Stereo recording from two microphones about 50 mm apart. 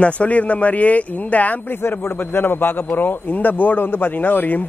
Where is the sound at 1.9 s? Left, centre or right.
Left.